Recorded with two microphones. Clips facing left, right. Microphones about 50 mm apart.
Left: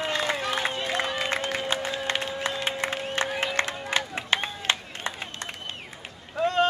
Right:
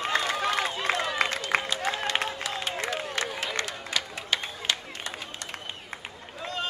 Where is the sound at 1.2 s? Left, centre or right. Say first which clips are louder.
Left 3 dB; left.